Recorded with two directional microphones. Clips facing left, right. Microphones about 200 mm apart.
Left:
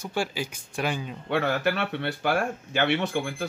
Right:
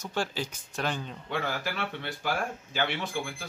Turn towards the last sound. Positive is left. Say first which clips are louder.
# left 6 dB
turn(degrees=65)  # may be behind; listen again after turning